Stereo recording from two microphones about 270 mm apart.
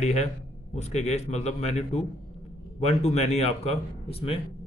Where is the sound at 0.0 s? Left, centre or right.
Left.